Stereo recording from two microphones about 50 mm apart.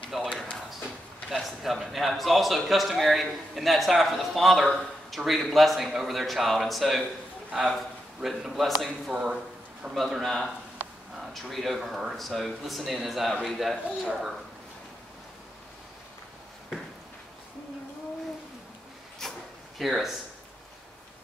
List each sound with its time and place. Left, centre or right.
0.1 s a sound: centre
1.3 s a man's voice: centre
8.2 s a man's voice: centre
9.1 s speech: centre
9.9 s a man's voice: centre
10.8 s a sound: right
11.1 s a man's voice: centre
19.2 s a sound: centre
19.8 s a man's voice: centre